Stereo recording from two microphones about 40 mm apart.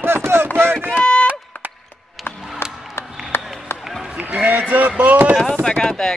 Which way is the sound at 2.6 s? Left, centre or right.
Left.